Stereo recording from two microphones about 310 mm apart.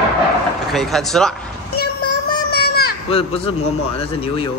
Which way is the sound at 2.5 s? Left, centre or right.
Left.